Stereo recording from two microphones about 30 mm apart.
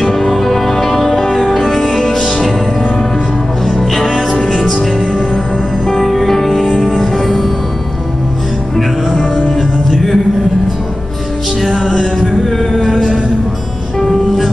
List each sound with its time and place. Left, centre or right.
0.0 s music: centre
2.1 s music: left
3.6 s music: centre
5.9 s music: centre
9.6 s music: centre
13.9 s music: centre